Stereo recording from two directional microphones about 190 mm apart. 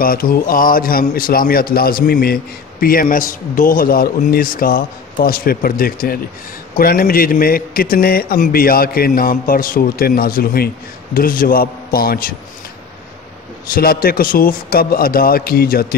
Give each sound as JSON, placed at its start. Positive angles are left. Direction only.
{"t": 0.0, "sound": "a man's voice", "side_deg": 50}
{"t": 13.7, "sound": "a man's voice", "side_deg": 50}